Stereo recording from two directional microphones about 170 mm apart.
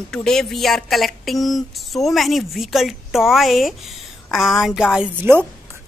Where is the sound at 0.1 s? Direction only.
5° left (ahead or behind).